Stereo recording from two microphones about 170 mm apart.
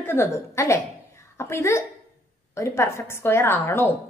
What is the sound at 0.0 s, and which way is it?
A woman's voice, 15° left (ahead or behind).